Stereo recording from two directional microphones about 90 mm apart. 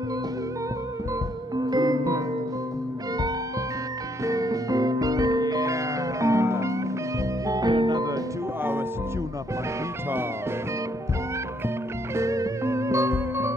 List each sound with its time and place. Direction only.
1.6 s music: 50° right (ahead or behind)
4.2 s music: 40° right (ahead or behind)
7.4 s organ: 45° right (ahead or behind)
7.7 s music: 60° right (ahead or behind)
12.2 s music: 35° right (ahead or behind)